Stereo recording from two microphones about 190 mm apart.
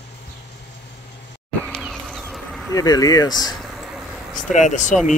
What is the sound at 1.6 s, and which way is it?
Bee, centre (ahead or behind).